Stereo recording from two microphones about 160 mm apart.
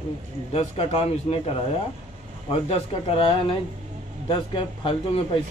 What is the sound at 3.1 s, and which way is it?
A man's voice, 35° left (ahead or behind).